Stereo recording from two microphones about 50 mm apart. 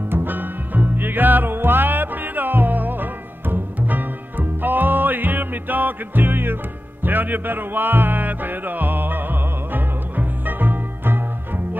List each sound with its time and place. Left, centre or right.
0.1 s music: right